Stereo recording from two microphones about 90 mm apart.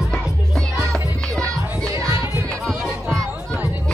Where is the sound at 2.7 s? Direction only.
5° right (ahead or behind).